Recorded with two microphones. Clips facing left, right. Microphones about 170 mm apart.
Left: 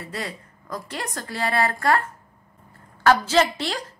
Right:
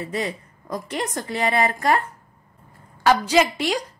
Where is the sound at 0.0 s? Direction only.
20° right (ahead or behind).